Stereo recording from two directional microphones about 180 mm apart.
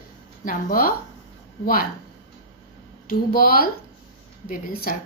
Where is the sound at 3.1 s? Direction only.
55° left (ahead or behind).